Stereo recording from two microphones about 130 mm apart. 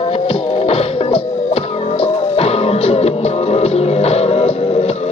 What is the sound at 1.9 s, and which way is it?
Music, 50° left (ahead or behind).